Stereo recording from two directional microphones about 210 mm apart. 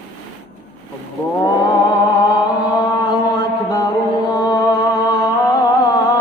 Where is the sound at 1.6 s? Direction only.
20° left (ahead or behind).